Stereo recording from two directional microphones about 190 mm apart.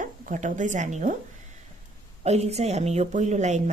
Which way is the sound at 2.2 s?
35° right (ahead or behind).